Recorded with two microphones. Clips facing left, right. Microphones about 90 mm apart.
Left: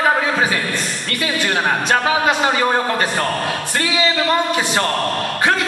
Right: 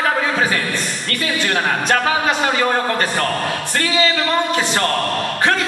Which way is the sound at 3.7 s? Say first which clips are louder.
Right 2 dB; 15° left (ahead or behind).